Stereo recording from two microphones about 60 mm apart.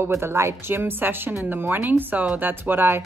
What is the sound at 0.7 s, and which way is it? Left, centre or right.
A woman's voice, right.